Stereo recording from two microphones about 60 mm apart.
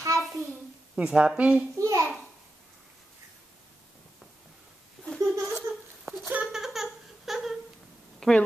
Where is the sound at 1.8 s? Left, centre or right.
Right.